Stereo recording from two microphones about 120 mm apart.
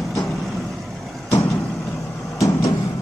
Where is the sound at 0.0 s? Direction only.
Centre (ahead or behind).